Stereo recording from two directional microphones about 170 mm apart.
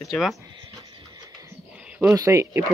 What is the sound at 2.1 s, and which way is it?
Speech, 20° right (ahead or behind).